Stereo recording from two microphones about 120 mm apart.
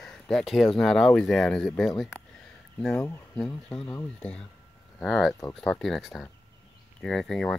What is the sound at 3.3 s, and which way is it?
Speech, 5° left (ahead or behind).